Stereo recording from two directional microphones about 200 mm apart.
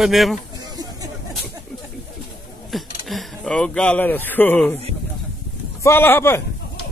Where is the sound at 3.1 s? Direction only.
Centre (ahead or behind).